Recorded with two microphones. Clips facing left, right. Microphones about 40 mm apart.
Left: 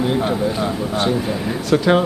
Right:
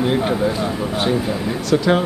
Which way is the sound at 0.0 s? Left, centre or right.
Centre.